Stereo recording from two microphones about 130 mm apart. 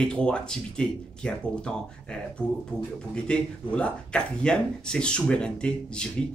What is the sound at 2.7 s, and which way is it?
Speech, 15° right (ahead or behind).